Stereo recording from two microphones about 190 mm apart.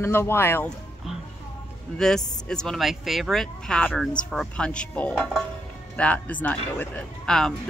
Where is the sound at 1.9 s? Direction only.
5° left (ahead or behind).